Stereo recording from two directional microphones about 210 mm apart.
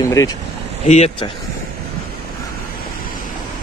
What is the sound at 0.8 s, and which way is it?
Speech, 30° left (ahead or behind).